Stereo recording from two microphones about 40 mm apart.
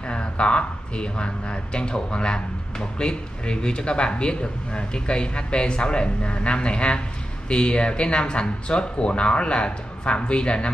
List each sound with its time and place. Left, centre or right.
0.0 s speech: left